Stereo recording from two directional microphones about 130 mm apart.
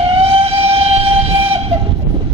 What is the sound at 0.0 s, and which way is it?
Train, 50° right (ahead or behind).